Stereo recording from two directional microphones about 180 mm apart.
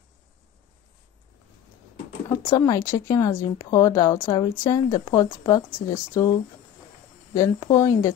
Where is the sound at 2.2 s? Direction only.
15° left (ahead or behind).